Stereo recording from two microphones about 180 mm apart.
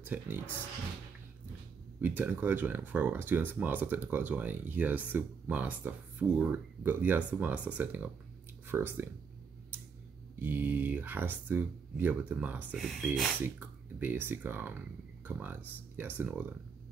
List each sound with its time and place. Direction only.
0.0 s speech: 10° right (ahead or behind)
2.0 s speech: 10° right (ahead or behind)
10.4 s speech: 10° right (ahead or behind)
13.4 s speech: 10° right (ahead or behind)